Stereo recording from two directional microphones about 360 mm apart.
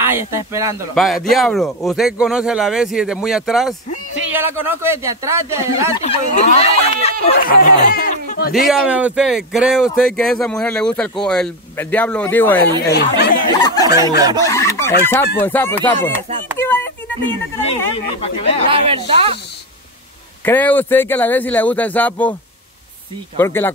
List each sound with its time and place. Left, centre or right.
0.0 s speech: centre
5.7 s speech: centre
8.6 s speech: centre
12.9 s speech: left
13.6 s snicker: centre
14.5 s chicken: centre
15.4 s speech: centre
16.5 s a sound: centre
17.6 s speech: centre
18.7 s speech: centre
20.4 s speech: centre
23.3 s speech: centre